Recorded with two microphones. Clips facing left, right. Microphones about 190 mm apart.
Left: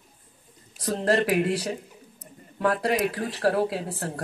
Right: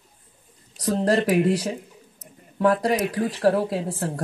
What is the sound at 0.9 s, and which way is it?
Speech, 40° right (ahead or behind).